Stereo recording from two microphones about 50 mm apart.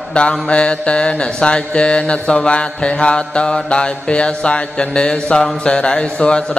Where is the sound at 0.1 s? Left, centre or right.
Left.